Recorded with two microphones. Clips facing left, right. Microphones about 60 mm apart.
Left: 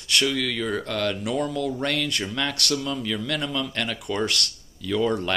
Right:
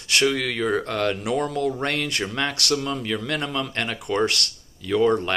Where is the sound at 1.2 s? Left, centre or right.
Right.